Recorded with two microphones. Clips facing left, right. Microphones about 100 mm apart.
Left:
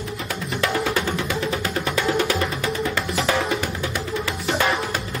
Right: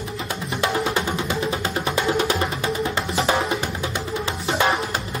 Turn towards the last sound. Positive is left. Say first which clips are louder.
# right 1 dB
turn(degrees=-25)  # may be behind; listen again after turning